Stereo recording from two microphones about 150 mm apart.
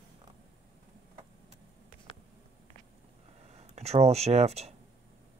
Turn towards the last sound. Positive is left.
turn(degrees=-45)  # may be behind; listen again after turning